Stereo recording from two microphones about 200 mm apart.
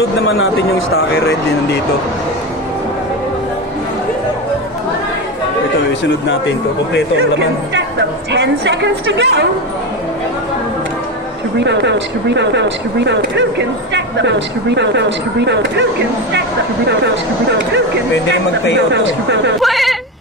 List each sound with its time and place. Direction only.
6.2 s speech: 65° left (ahead or behind)
8.3 s speech: 60° right (ahead or behind)
11.6 s speech: 60° right (ahead or behind)
18.9 s speech: 60° right (ahead or behind)
19.6 s speech: centre (ahead or behind)